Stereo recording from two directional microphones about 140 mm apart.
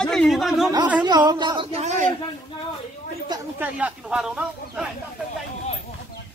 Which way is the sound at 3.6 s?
10° right (ahead or behind).